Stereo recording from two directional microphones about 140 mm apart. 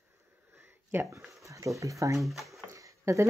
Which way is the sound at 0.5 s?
15° right (ahead or behind).